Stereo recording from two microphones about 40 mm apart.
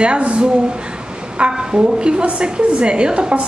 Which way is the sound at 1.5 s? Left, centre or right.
Right.